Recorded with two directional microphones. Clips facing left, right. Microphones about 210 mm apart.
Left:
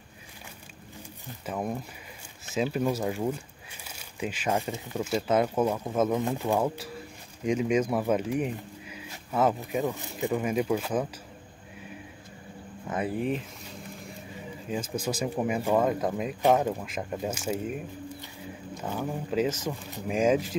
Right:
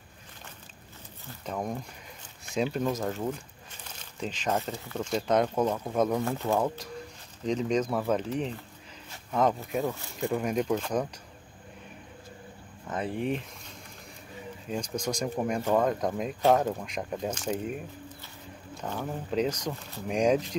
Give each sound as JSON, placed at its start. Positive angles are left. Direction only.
{"t": 1.2, "sound": "speech", "side_deg": 5}
{"t": 12.8, "sound": "speech", "side_deg": 10}
{"t": 14.7, "sound": "speech", "side_deg": 5}
{"t": 18.8, "sound": "speech", "side_deg": 5}
{"t": 19.7, "sound": "speech", "side_deg": 15}
{"t": 20.1, "sound": "speech", "side_deg": 5}